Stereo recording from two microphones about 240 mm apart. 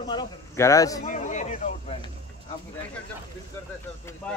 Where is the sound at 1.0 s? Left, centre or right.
Left.